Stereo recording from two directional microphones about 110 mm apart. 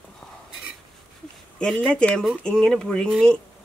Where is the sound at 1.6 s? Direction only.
5° left (ahead or behind).